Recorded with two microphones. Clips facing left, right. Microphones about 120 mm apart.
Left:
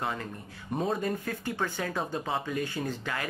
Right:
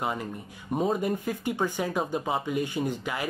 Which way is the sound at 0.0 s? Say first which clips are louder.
Right 3 dB; 15° right (ahead or behind).